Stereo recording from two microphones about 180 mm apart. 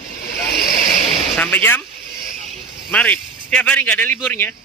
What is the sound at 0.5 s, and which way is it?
Vehicle, 60° left (ahead or behind).